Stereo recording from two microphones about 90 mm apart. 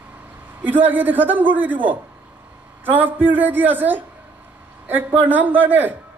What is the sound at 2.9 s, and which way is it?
A man's voice, 20° right (ahead or behind).